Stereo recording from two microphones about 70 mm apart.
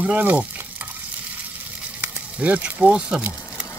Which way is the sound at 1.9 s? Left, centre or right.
Right.